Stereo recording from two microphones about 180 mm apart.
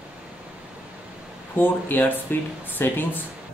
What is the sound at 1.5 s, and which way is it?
Speech, 10° left (ahead or behind).